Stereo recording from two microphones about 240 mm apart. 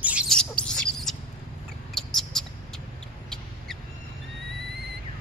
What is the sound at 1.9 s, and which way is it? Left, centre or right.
Mouse, centre.